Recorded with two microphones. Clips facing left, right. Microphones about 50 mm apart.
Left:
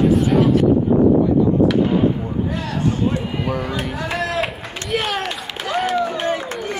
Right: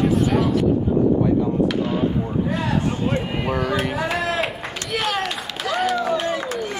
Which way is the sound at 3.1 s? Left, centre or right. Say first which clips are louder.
Left 1 dB; right.